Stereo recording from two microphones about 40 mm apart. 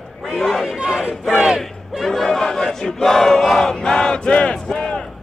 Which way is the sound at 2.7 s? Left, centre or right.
Centre.